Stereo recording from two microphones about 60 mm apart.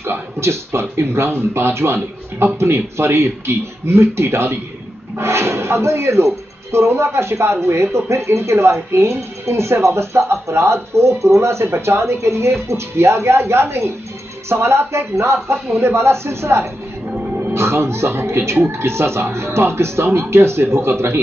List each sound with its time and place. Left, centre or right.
0.0 s speech: right